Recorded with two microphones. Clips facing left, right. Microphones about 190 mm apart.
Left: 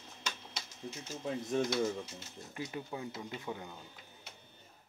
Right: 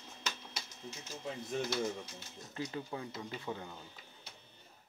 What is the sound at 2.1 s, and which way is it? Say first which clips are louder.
Speech: even; 20° left (ahead or behind).